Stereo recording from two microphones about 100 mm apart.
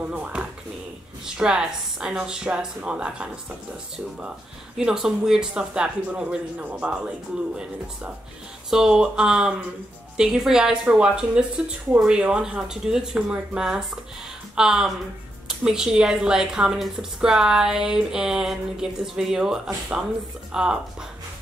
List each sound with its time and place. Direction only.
0.0 s a sound: 15° right (ahead or behind)
1.2 s speech: 5° right (ahead or behind)
4.7 s speech: 5° right (ahead or behind)
8.6 s a woman's voice: 5° right (ahead or behind)